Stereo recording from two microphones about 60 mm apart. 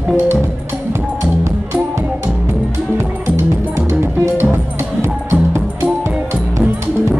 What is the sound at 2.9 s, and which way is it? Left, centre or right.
Music, right.